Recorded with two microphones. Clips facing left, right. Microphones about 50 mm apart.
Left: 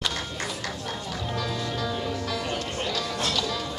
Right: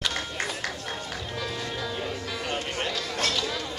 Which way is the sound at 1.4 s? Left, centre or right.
Centre.